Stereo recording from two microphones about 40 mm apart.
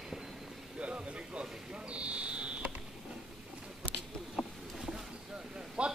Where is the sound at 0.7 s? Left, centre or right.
Right.